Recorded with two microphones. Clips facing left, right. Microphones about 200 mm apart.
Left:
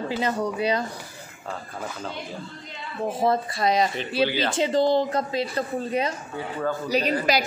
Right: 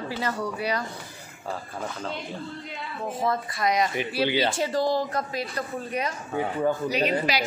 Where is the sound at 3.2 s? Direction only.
30° left (ahead or behind).